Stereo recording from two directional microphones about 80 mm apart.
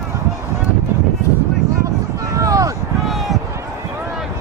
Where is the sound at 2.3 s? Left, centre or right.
Right.